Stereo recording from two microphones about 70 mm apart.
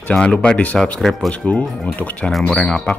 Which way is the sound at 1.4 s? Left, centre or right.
Left.